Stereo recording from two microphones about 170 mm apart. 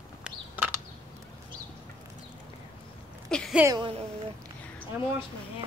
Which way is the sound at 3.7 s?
25° right (ahead or behind).